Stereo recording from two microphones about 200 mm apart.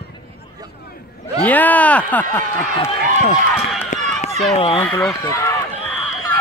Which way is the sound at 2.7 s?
30° left (ahead or behind).